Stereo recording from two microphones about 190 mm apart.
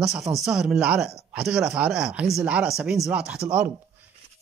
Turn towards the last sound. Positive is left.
turn(degrees=-5)  # may be behind; listen again after turning